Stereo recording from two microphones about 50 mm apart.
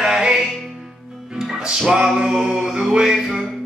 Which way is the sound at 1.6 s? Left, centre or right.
Centre.